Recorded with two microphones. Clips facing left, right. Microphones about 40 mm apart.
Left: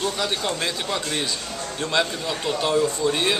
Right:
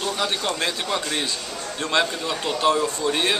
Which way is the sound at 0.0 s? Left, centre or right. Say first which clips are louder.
Even; centre.